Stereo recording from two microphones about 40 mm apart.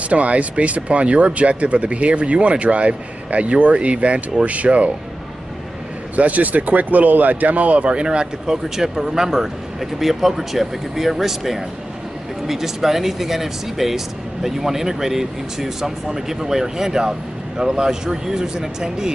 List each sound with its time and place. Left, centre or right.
0.1 s speech: right
6.1 s speech: right; by 19.1 s centre